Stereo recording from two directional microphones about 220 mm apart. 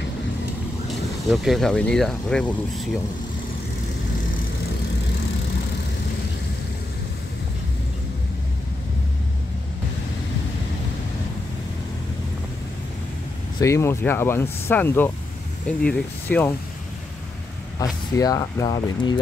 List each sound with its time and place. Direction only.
1.3 s speech: centre (ahead or behind)
13.6 s speech: 15° left (ahead or behind)
18.1 s speech: 15° left (ahead or behind)